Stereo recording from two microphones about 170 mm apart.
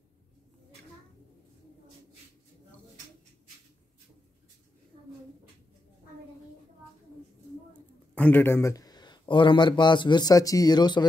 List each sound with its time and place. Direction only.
8.1 s speech: 10° left (ahead or behind); by 11.1 s 25° left (ahead or behind)